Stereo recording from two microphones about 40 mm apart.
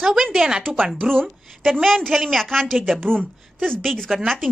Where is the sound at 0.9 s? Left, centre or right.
Centre.